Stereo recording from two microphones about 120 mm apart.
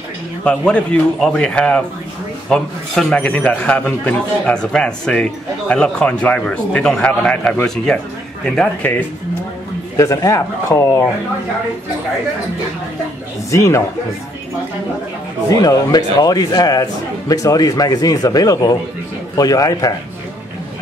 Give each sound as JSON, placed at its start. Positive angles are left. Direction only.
{"t": 0.4, "sound": "a man's voice", "side_deg": 10}
{"t": 8.8, "sound": "a man's voice", "side_deg": 15}
{"t": 9.9, "sound": "speech", "side_deg": 25}
{"t": 13.5, "sound": "speech", "side_deg": 25}
{"t": 15.5, "sound": "a man's voice", "side_deg": 30}